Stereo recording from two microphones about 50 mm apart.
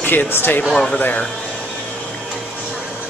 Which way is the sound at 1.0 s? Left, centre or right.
Left.